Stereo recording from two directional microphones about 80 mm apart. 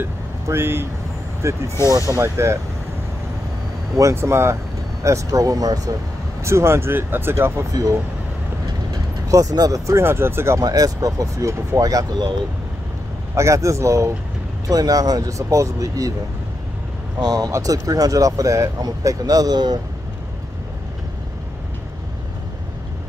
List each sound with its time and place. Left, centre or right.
0.0 s speech: right
1.9 s speech: right
4.1 s speech: right
6.4 s speech: right
7.7 s speech: right
10.6 s speech: right
13.3 s speech: right
14.7 s speech: right
17.2 s speech: right